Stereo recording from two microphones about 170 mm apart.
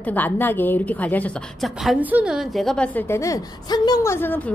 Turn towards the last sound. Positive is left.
turn(degrees=10)  # may be behind; listen again after turning